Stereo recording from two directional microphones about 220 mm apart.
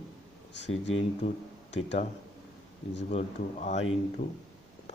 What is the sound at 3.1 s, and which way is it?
Speech, 30° left (ahead or behind).